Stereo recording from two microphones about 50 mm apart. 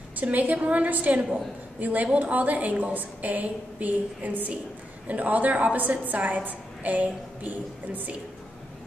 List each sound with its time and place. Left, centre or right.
0.2 s a woman's voice: right